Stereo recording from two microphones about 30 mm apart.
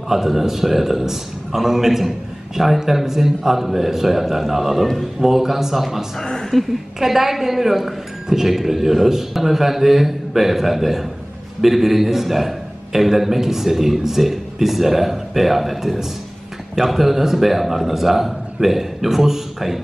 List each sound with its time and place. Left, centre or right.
0.1 s a man's voice: centre
6.5 s a woman's voice: centre
7.0 s a man's voice: centre